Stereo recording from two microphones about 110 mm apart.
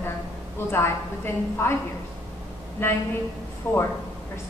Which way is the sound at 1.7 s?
20° left (ahead or behind).